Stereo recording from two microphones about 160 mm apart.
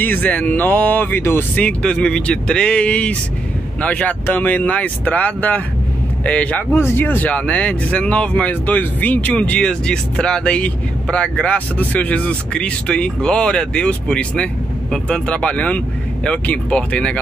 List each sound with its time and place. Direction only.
0.0 s speech: 10° left (ahead or behind)